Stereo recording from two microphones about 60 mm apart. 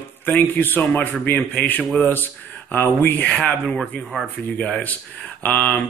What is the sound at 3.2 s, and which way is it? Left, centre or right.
Speech, centre.